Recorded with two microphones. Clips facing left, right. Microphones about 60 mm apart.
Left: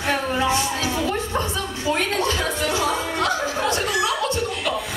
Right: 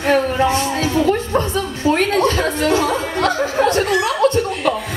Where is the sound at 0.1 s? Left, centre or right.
Right.